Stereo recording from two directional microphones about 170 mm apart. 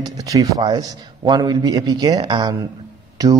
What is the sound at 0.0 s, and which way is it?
Speech, 20° right (ahead or behind).